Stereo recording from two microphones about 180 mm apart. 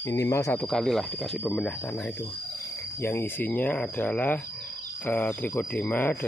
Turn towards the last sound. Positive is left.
turn(degrees=10)  # may be behind; listen again after turning